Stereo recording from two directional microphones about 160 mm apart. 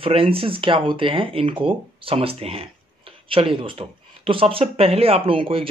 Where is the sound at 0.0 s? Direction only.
35° right (ahead or behind).